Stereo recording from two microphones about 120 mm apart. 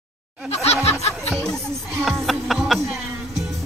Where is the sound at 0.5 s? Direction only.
60° left (ahead or behind).